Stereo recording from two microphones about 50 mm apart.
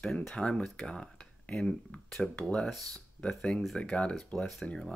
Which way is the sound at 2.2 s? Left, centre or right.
Centre.